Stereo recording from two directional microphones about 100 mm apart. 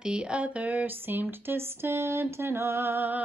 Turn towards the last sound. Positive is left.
turn(degrees=-20)  # may be behind; listen again after turning